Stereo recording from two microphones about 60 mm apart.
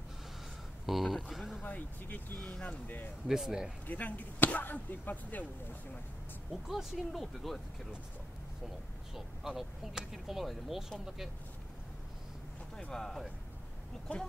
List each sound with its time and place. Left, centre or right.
0.8 s a sound: centre
1.6 s speech: left
3.3 s speech: centre
3.8 s speech: left
6.5 s speech: centre
9.6 s speech: centre
12.9 s speech: centre
14.1 s speech: left